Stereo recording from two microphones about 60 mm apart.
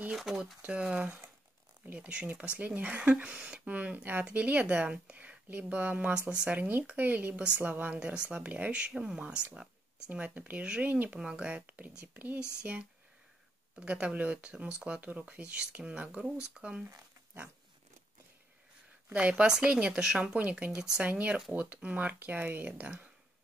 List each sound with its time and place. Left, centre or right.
0.1 s speech: centre
0.7 s speech: centre
13.7 s speech: centre
19.1 s speech: right
20.3 s speech: right
20.7 s speech: centre
21.0 s speech: right